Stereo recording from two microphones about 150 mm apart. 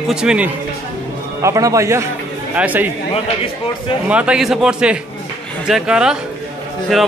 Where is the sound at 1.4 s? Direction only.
20° right (ahead or behind).